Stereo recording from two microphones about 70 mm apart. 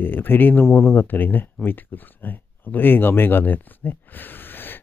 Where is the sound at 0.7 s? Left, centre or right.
Centre.